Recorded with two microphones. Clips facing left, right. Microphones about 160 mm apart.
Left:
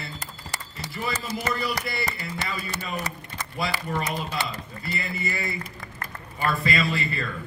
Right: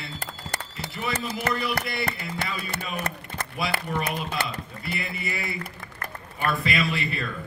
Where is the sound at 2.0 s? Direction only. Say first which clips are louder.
Right 1 dB; 55° right (ahead or behind).